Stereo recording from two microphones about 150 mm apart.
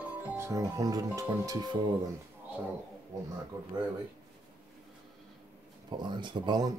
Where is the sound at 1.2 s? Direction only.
25° right (ahead or behind).